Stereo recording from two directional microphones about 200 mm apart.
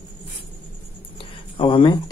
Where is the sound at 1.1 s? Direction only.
25° left (ahead or behind).